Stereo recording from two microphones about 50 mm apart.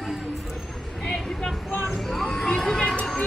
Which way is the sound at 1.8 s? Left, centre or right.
Centre.